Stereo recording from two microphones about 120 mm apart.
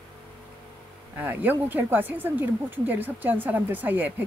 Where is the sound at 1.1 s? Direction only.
15° right (ahead or behind).